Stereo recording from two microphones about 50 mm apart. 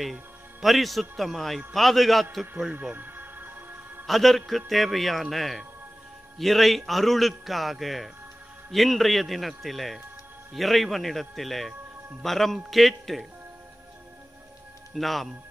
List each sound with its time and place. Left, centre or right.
0.0 s a man's voice: centre
3.0 s music: right
4.0 s a man's voice: centre
15.0 s a man's voice: centre